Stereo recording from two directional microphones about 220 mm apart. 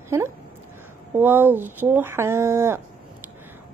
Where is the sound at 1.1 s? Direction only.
10° right (ahead or behind).